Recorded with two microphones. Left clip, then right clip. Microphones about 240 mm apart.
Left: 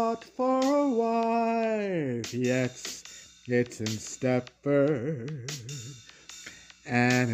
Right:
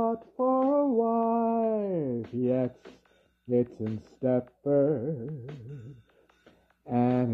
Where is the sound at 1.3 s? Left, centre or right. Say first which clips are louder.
Even; left.